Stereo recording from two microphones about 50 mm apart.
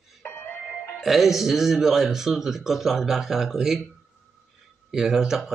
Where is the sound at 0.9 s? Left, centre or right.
Centre.